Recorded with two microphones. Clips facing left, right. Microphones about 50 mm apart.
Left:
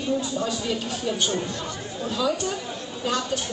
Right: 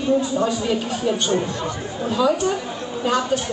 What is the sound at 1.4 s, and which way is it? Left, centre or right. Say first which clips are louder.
Speech: right 5 dB; right.